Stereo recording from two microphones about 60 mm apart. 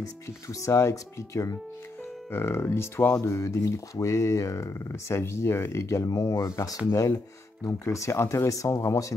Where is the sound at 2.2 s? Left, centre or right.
Left.